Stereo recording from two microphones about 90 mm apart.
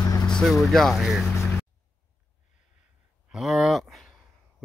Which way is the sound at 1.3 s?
30° left (ahead or behind).